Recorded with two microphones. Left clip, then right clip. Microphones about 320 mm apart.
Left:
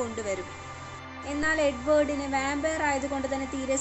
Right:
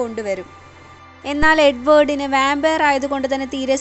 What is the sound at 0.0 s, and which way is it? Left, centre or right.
A woman's voice, right.